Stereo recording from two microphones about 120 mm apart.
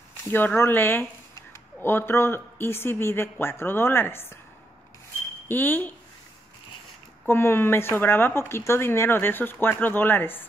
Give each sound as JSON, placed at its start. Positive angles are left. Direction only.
{"t": 0.3, "sound": "speech", "side_deg": 15}
{"t": 5.5, "sound": "speech", "side_deg": 15}
{"t": 7.2, "sound": "speech", "side_deg": 20}